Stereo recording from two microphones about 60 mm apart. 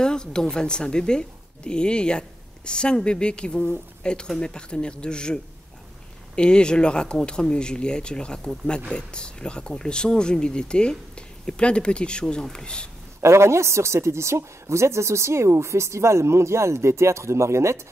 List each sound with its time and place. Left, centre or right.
0.0 s speech: centre
13.2 s a woman's voice: right